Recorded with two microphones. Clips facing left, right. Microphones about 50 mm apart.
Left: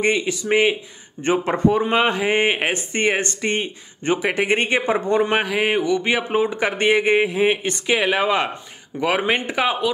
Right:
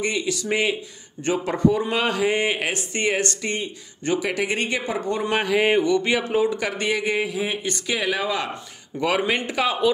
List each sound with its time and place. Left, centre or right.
0.0 s speech: left
1.2 s speech: left
5.4 s mantra: centre
6.0 s speech: centre
9.0 s speech: centre